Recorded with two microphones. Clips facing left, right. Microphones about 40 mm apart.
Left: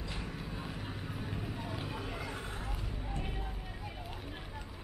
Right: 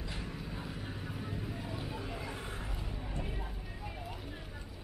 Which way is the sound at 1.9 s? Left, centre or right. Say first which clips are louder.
Left 1 dB; centre.